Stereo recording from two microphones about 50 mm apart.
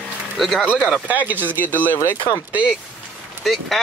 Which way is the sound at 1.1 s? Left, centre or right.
Right.